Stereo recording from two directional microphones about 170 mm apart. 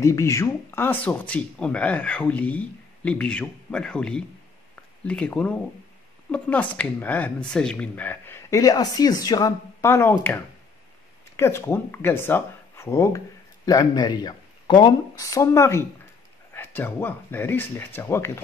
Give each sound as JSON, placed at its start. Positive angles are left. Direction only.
{"t": 0.0, "sound": "speech", "side_deg": 15}